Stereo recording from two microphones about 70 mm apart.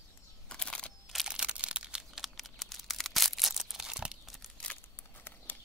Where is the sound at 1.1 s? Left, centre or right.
Centre.